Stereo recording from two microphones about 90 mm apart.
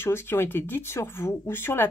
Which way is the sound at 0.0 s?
25° left (ahead or behind).